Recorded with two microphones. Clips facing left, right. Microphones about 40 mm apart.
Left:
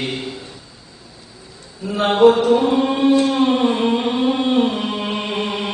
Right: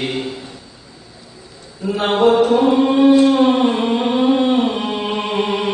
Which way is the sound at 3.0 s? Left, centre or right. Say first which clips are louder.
Right 3 dB; right.